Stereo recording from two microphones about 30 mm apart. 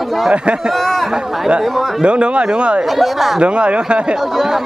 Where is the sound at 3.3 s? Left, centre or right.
Right.